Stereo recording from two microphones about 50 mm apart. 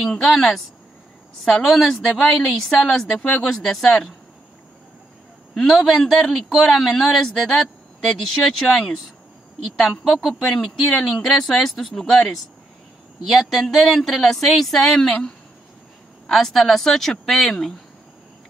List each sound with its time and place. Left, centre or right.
0.0 s a woman's voice: centre
3.2 s speech: left
3.6 s speech: centre
5.6 s a woman's voice: centre